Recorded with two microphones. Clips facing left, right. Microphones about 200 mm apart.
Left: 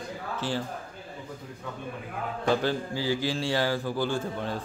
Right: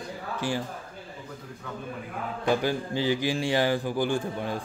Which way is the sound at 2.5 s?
15° right (ahead or behind).